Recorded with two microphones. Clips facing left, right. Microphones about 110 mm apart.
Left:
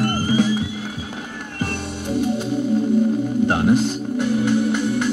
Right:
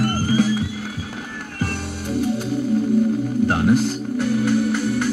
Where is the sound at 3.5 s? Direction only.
20° left (ahead or behind).